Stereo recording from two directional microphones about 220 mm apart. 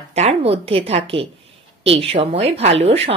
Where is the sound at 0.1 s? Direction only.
30° right (ahead or behind).